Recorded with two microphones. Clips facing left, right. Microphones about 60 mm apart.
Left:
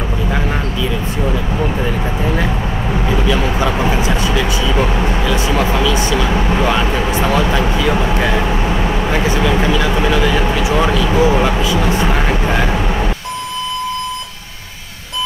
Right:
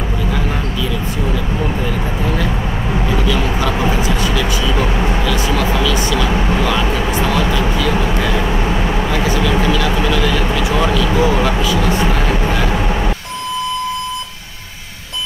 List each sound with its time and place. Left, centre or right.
4.0 s vehicle: left
5.2 s a sound: left
7.2 s vehicle: left
9.6 s speech: left